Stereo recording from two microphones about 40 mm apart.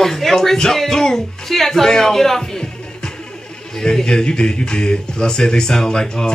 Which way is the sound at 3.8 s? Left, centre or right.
Centre.